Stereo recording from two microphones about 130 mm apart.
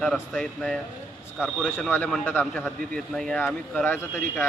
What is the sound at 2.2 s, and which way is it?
Speech, 15° left (ahead or behind).